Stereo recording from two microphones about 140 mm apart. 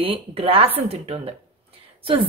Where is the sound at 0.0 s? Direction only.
40° right (ahead or behind).